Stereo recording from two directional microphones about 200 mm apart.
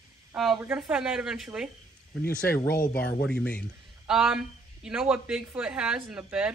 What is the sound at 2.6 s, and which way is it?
Speech, 45° left (ahead or behind).